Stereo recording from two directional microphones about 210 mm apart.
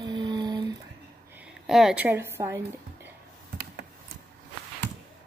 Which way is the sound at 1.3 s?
5° right (ahead or behind).